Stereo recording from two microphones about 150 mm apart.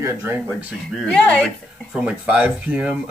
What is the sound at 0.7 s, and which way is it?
Speech, centre (ahead or behind).